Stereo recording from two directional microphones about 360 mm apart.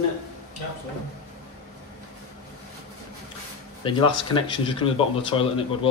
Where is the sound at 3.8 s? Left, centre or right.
Centre.